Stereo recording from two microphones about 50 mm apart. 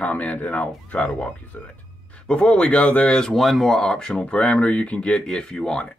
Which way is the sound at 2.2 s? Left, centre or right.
Left.